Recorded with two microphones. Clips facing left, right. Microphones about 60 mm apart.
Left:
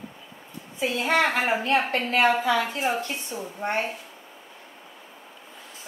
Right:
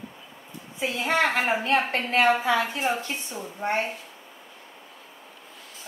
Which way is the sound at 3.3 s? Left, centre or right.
Centre.